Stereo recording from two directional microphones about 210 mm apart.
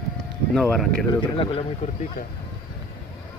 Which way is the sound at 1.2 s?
25° left (ahead or behind).